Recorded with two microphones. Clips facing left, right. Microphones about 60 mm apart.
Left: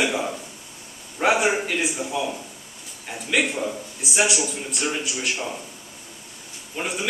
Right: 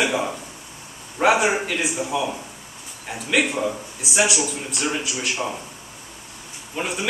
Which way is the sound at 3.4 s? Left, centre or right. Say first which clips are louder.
Right 2 dB; centre.